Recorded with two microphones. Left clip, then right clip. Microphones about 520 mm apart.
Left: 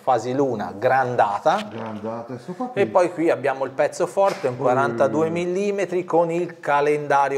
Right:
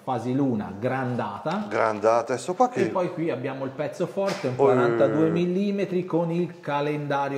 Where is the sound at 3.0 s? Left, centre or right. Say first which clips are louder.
Left 8 dB; left.